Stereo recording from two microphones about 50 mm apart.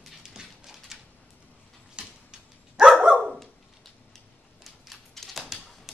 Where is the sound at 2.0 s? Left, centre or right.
Right.